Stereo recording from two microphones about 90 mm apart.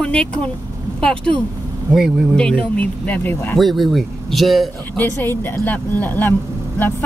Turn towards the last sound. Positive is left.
turn(degrees=20)  # may be behind; listen again after turning